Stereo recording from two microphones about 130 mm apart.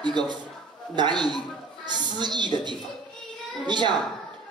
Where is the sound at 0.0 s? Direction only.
35° right (ahead or behind).